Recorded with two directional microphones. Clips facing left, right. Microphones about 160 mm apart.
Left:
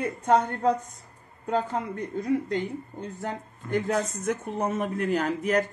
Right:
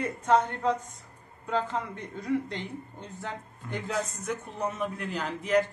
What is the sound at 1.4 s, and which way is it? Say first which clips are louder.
A man's voice: left 3 dB; 45° left (ahead or behind).